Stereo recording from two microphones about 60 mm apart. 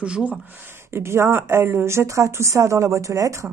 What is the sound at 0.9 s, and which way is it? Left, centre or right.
A woman's voice, right.